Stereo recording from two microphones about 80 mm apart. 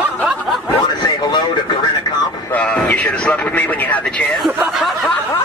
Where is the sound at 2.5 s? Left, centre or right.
Centre.